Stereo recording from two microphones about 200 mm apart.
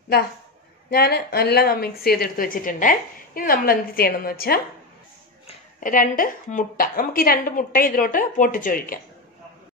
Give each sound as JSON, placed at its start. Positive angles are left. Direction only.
{"t": 0.8, "sound": "a woman's voice", "side_deg": 50}